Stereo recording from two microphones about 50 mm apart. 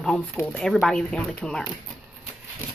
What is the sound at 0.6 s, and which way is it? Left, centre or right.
A woman's voice, centre.